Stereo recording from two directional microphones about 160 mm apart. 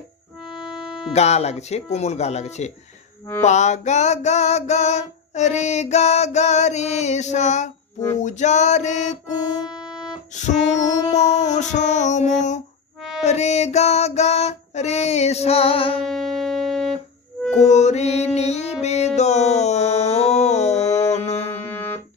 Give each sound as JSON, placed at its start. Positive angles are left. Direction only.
{"t": 1.1, "sound": "a sound", "side_deg": 40}
{"t": 10.3, "sound": "a sound", "side_deg": 50}
{"t": 13.2, "sound": "music", "side_deg": 45}
{"t": 16.1, "sound": "music", "side_deg": 0}
{"t": 17.6, "sound": "music", "side_deg": 45}
{"t": 21.6, "sound": "music", "side_deg": 10}